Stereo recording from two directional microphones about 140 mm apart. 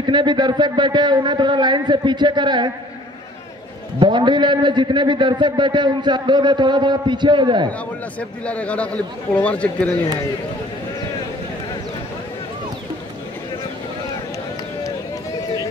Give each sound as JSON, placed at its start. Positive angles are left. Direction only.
{"t": 0.0, "sound": "a man's voice", "side_deg": -35}
{"t": 4.0, "sound": "a man's voice", "side_deg": -35}
{"t": 8.2, "sound": "a man's voice", "side_deg": 10}